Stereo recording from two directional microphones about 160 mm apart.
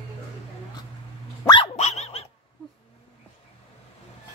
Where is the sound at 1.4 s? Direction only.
25° left (ahead or behind).